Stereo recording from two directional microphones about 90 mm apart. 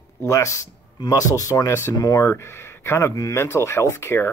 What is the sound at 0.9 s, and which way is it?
Speech, 50° left (ahead or behind).